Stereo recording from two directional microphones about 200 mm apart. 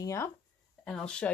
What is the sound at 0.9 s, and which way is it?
Speech, 5° left (ahead or behind).